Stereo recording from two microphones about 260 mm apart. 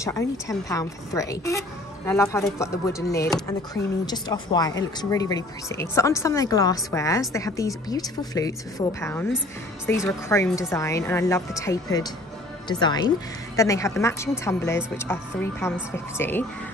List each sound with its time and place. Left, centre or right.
0.0 s speech: centre